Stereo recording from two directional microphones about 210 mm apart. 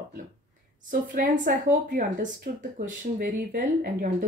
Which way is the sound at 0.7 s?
40° right (ahead or behind).